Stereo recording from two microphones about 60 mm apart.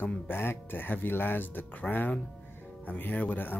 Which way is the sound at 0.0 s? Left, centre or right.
Left.